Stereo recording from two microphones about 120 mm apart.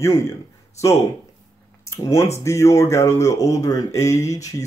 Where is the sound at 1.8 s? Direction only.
25° left (ahead or behind).